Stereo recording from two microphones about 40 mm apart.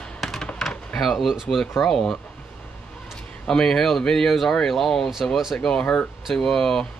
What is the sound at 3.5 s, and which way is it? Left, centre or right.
Speech, centre.